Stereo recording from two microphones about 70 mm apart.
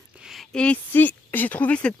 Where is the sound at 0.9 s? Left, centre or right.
Left.